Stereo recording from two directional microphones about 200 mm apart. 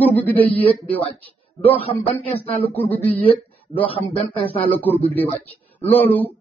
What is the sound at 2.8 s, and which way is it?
Speech, 30° left (ahead or behind).